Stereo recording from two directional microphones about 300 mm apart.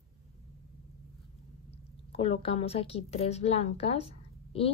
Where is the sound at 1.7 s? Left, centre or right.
Centre.